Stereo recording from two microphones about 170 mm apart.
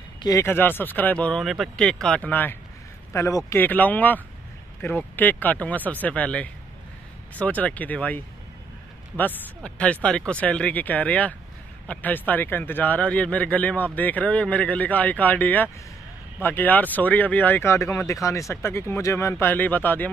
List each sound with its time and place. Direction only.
0.2 s speech: 20° left (ahead or behind)